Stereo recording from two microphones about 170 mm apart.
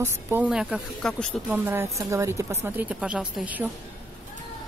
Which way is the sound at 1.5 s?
10° right (ahead or behind).